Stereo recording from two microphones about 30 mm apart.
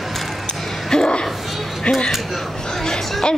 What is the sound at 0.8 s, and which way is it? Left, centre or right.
Speech, left.